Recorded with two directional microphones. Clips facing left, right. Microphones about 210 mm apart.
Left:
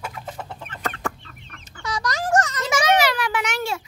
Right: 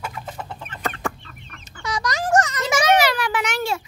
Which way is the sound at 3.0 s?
35° right (ahead or behind).